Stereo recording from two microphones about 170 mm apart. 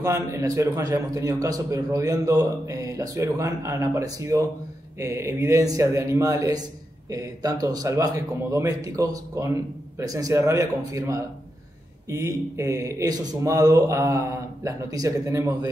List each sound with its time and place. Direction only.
0.0 s a man's voice: 15° right (ahead or behind)